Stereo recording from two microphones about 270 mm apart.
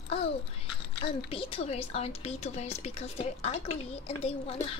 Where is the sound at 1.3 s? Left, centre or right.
Left.